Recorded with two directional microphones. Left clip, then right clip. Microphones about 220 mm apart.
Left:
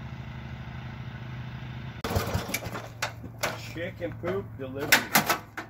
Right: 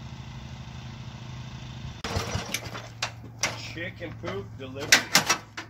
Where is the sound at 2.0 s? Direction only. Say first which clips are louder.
Left 1 dB; 45° left (ahead or behind).